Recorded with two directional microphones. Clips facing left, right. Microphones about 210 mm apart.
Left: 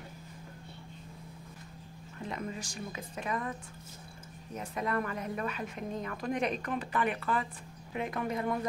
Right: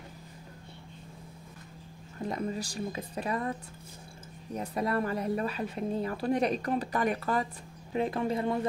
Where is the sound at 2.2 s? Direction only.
40° right (ahead or behind).